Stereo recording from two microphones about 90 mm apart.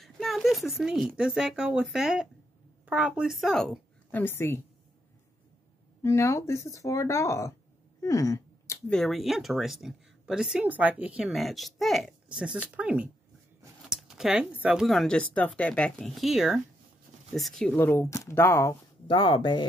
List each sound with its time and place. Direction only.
0.0 s speech: centre (ahead or behind)
4.1 s a woman's voice: 25° left (ahead or behind)
6.0 s speech: 35° left (ahead or behind)
8.0 s a sound: 35° left (ahead or behind)
8.8 s speech: 5° left (ahead or behind)
10.6 s speech: 20° right (ahead or behind)
11.3 s speech: centre (ahead or behind)
12.3 s speech: 10° right (ahead or behind)
14.9 s speech: 5° left (ahead or behind)
16.2 s speech: centre (ahead or behind)
17.7 s a woman's voice: 25° left (ahead or behind)
19.0 s speech: 70° left (ahead or behind)